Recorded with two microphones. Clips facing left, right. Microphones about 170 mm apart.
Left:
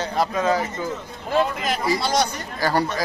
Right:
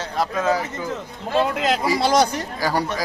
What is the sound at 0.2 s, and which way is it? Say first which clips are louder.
Speech: even; 5° right (ahead or behind).